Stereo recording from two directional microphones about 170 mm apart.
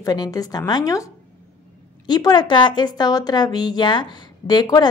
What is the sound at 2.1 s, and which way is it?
A woman's voice, 25° left (ahead or behind).